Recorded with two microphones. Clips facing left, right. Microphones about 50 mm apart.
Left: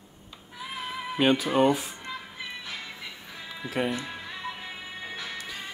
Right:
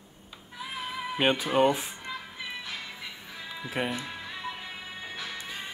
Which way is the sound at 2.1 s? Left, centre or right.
Centre.